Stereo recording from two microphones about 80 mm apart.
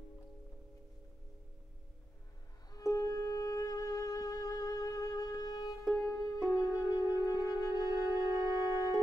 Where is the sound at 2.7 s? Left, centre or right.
Left.